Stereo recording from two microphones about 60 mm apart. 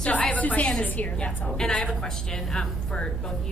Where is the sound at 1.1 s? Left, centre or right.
Centre.